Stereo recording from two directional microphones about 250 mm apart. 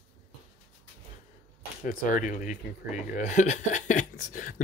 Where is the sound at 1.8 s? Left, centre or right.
Left.